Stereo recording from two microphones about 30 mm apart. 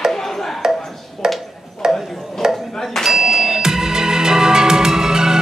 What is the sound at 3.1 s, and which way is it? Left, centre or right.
Music, centre.